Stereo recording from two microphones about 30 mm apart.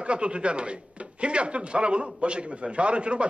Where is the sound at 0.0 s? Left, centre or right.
Right.